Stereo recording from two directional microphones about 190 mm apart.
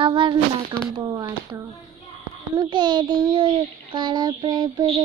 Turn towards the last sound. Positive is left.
turn(degrees=-25)  # may be behind; listen again after turning